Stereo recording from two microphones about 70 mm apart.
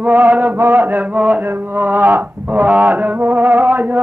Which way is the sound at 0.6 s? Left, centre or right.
Right.